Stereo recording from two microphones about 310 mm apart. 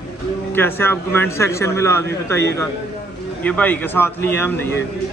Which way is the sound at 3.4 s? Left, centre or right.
Centre.